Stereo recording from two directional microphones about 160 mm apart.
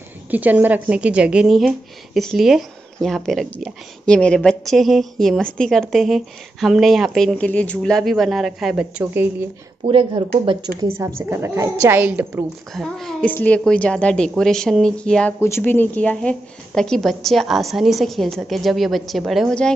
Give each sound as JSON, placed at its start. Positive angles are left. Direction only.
{"t": 0.3, "sound": "a woman's voice", "side_deg": -10}
{"t": 9.8, "sound": "speech", "side_deg": -30}
{"t": 10.8, "sound": "a woman's voice", "side_deg": -15}
{"t": 12.7, "sound": "a woman's voice", "side_deg": 5}